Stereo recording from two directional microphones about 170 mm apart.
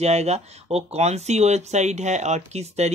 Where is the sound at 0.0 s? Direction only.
40° right (ahead or behind).